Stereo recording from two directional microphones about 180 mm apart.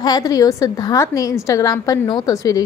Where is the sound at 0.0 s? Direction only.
20° left (ahead or behind).